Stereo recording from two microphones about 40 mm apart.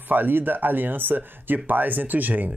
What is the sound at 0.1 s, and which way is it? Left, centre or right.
Speech, right.